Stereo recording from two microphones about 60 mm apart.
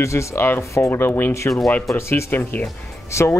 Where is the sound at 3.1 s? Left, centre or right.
Left.